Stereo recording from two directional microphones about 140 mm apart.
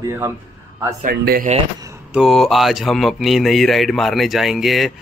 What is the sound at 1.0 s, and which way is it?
Speech, 90° right.